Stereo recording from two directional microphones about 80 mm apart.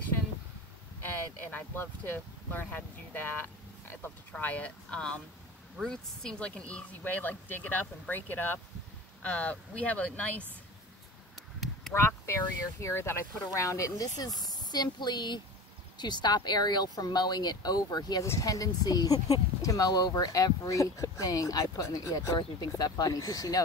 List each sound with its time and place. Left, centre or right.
1.0 s speech: left
3.9 s speech: left
12.3 s speech: left
18.2 s speech: left
22.4 s speech: left